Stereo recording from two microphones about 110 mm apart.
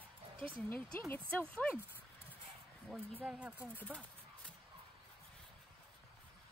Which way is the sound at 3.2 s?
10° right (ahead or behind).